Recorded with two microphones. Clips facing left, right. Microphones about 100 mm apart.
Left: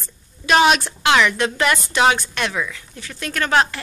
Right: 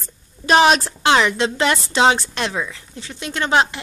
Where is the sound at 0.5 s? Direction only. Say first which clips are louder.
Right 1 dB; 35° right (ahead or behind).